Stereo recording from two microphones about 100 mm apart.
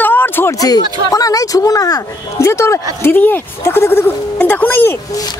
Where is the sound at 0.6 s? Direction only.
40° left (ahead or behind).